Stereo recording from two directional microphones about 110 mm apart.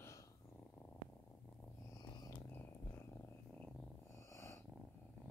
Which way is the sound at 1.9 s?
40° left (ahead or behind).